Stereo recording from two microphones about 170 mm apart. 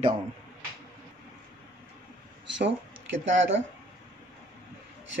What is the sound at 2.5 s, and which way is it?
Speech, 90° right.